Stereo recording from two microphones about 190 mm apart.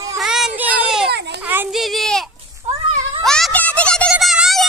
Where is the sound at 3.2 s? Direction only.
5° left (ahead or behind).